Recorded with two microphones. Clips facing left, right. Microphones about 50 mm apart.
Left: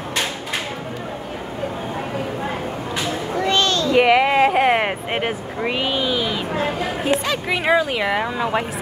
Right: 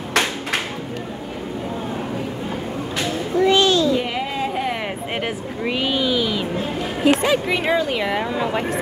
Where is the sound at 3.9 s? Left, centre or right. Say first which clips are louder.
Left 9 dB; left.